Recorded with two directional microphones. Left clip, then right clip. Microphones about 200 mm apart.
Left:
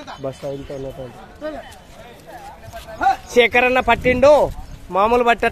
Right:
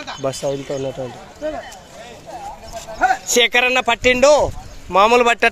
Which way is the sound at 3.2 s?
5° left (ahead or behind).